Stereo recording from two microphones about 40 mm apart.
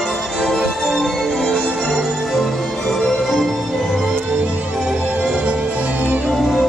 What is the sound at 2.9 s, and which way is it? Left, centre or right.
Music, centre.